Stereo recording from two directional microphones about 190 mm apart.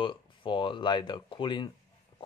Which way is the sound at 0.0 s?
25° left (ahead or behind).